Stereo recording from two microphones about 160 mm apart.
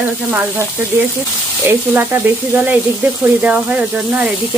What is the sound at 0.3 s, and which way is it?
Speech, 15° right (ahead or behind).